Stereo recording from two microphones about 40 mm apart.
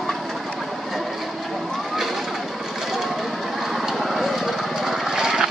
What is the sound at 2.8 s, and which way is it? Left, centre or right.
Vehicle, centre.